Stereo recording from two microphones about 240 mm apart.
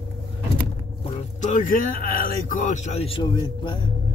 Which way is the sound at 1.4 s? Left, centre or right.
Left.